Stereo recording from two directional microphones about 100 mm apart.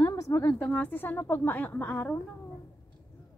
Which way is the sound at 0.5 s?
10° left (ahead or behind).